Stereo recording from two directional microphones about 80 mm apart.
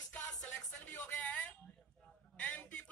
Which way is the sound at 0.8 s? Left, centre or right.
Centre.